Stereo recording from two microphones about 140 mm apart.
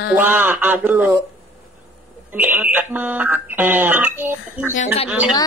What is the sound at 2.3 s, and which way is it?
Speech, 15° right (ahead or behind).